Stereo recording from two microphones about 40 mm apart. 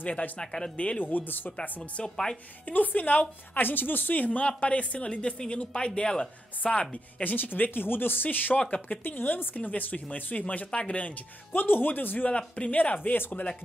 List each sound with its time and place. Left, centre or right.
0.4 s speech: centre
0.9 s speech: left
2.0 s speech: centre
2.6 s speech: left
3.6 s speech: left
7.2 s speech: left
7.8 s speech: left
8.5 s speech: left
9.0 s speech: left
9.6 s speech: left
11.5 s speech: left
12.3 s speech: left
13.1 s speech: left